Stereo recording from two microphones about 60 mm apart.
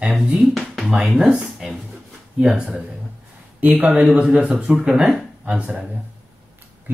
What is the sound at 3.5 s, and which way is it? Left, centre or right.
Speech, right.